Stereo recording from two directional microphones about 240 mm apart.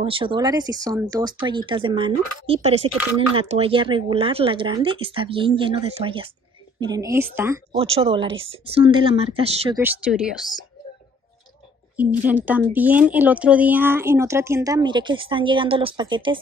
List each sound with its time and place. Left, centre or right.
0.0 s speech: right
7.9 s speech: right
9.8 s speech: centre
12.0 s speech: centre